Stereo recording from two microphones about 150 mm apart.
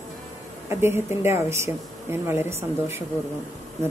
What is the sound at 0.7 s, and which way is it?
Speech, 15° right (ahead or behind).